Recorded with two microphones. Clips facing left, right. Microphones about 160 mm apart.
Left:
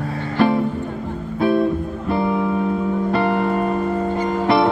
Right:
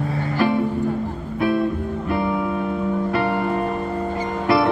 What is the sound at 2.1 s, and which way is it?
Music, 25° left (ahead or behind).